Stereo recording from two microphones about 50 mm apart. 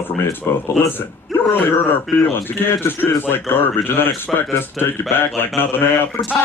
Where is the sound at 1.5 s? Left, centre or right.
Left.